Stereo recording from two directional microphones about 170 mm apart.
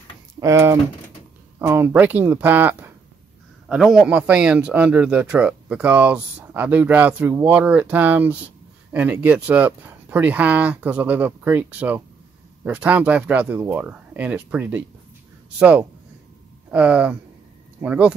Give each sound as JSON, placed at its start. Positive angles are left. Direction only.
{"t": 0.4, "sound": "a man's voice", "side_deg": -15}
{"t": 16.7, "sound": "a man's voice", "side_deg": -5}